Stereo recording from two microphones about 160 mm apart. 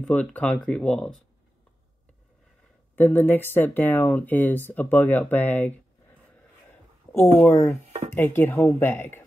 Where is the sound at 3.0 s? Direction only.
10° left (ahead or behind).